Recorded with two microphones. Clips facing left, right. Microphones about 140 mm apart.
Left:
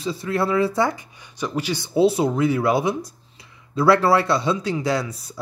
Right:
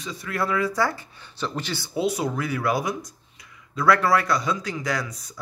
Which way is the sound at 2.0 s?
30° left (ahead or behind).